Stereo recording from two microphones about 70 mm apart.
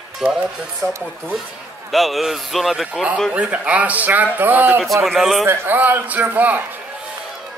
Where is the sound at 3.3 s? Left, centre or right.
Centre.